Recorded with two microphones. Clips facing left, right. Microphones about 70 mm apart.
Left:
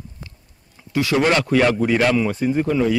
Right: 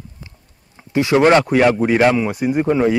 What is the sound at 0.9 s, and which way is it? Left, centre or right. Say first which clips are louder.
Speech: right 5 dB; right.